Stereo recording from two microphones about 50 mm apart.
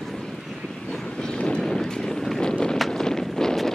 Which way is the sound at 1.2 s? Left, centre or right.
Centre.